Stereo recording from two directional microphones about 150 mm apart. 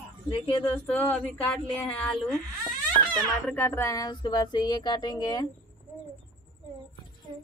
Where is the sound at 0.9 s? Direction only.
10° left (ahead or behind).